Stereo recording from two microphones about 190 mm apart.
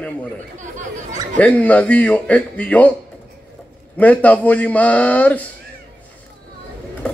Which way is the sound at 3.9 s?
10° left (ahead or behind).